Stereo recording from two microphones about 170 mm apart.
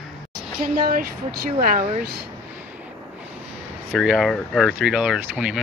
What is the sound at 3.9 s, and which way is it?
Speech, centre (ahead or behind).